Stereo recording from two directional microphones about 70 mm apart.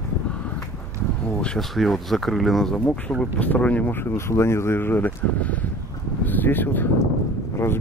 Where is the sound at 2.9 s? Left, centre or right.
Centre.